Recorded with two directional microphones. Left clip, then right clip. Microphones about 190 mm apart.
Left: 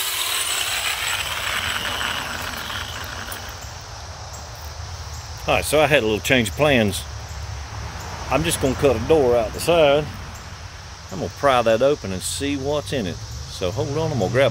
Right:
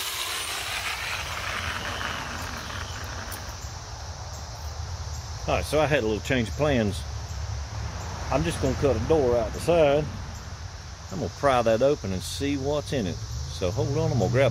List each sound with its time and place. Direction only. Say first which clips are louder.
0.0 s mechanisms: left 7 dB; 20° left (ahead or behind)
1.0 s mechanisms: left 7 dB; 45° left (ahead or behind)
5.5 s speech: left 7 dB; 55° left (ahead or behind)
8.3 s speech: left 6 dB; 50° left (ahead or behind)
9.7 s speech: left 5 dB; 15° left (ahead or behind)
11.4 s speech: left 5 dB; 5° left (ahead or behind)